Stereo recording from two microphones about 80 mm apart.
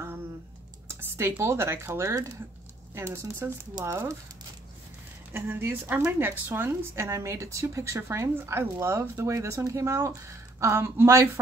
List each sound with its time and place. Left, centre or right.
0.8 s computer keyboard: right
1.4 s speech: right
5.3 s speech: right